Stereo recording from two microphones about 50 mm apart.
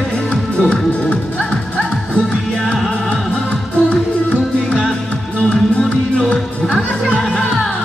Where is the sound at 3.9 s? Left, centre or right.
Centre.